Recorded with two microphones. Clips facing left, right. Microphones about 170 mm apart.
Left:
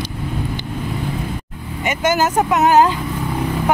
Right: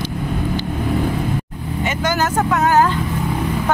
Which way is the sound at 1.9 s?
15° left (ahead or behind).